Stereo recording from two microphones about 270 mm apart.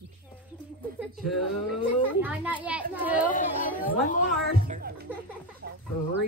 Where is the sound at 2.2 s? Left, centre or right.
Centre.